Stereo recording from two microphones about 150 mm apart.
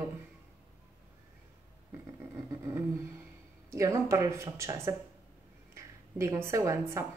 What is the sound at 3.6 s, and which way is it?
A woman's voice, 20° right (ahead or behind).